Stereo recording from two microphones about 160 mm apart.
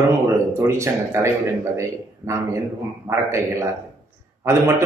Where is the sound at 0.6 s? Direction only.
15° right (ahead or behind).